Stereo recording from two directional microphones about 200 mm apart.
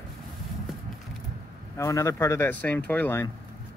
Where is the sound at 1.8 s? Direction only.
15° left (ahead or behind).